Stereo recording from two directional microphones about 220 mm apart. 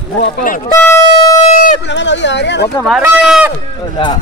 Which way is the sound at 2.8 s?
Centre (ahead or behind).